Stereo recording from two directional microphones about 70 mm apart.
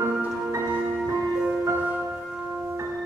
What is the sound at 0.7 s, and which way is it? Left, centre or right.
Music, centre.